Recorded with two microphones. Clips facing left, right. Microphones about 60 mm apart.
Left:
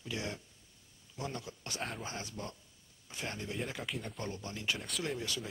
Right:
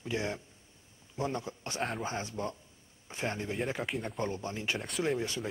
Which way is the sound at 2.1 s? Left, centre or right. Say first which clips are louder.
Right 7 dB; right.